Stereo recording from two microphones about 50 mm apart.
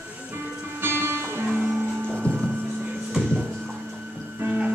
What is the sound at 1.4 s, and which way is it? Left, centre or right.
Music, right.